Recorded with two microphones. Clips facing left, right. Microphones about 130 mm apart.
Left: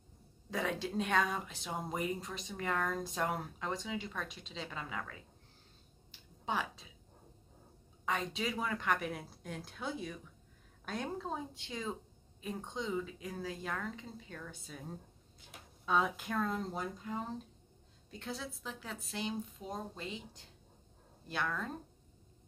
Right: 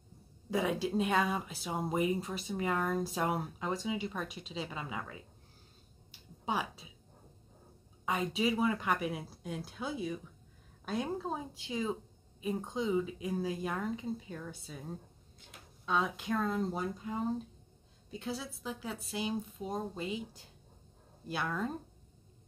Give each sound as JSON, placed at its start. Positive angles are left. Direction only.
{"t": 0.5, "sound": "speech", "side_deg": -10}
{"t": 6.1, "sound": "a sound", "side_deg": -10}
{"t": 8.0, "sound": "speech", "side_deg": -10}